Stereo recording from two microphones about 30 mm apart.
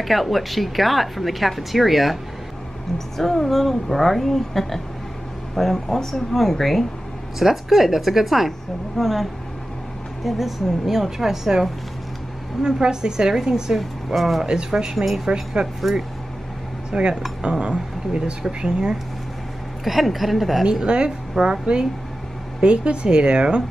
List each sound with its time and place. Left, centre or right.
0.0 s a woman's voice: centre
3.2 s a woman's voice: centre
7.3 s a woman's voice: centre
8.5 s a woman's voice: centre
12.6 s a woman's voice: right
13.7 s a woman's voice: centre
14.4 s a woman's voice: right
15.0 s a woman's voice: centre
16.9 s a woman's voice: right
19.8 s a woman's voice: centre
20.8 s a woman's voice: right
22.6 s speech: right